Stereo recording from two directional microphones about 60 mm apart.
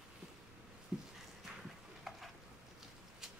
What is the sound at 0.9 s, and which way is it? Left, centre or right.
Dog, centre.